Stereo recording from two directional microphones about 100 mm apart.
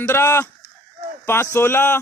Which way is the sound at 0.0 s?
25° left (ahead or behind).